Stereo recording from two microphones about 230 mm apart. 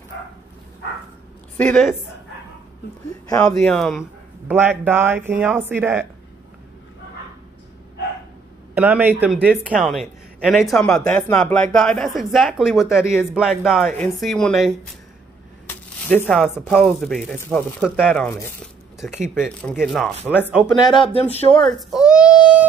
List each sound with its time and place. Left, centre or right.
1.6 s speech: centre
3.3 s speech: centre
3.6 s speech: centre
8.7 s speech: centre
20.6 s speech: centre
21.5 s a child's voice: centre